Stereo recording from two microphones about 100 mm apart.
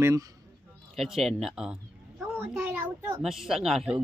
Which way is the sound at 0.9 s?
Centre (ahead or behind).